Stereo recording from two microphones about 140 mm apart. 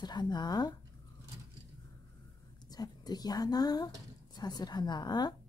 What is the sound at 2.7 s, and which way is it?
A woman's voice, 30° left (ahead or behind).